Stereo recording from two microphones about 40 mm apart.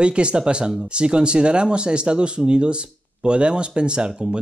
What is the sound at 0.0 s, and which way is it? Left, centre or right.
Speech, right.